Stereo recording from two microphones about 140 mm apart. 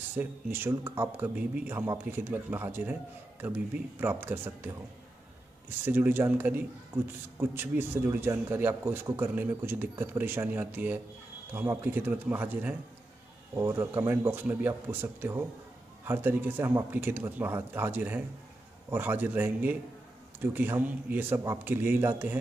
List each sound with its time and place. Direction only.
0.1 s a man's voice: 15° right (ahead or behind)
5.9 s a man's voice: 15° right (ahead or behind)